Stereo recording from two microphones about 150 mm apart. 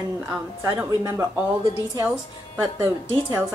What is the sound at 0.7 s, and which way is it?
Speech, 15° right (ahead or behind).